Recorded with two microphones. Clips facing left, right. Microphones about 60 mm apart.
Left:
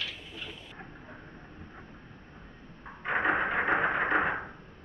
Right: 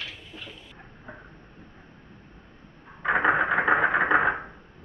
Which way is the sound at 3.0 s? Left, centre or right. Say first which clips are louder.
Right 6 dB; right.